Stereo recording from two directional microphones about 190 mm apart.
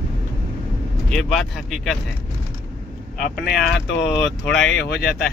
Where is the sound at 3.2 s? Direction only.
60° left (ahead or behind).